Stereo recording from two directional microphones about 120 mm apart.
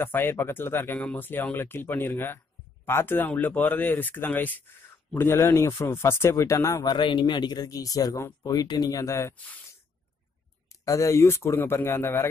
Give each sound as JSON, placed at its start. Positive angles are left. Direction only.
{"t": 0.0, "sound": "speech", "side_deg": 20}
{"t": 10.7, "sound": "speech", "side_deg": 25}